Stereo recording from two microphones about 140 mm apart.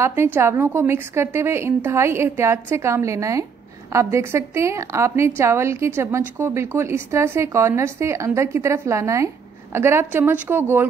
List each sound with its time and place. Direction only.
0.0 s a woman's voice: 15° right (ahead or behind)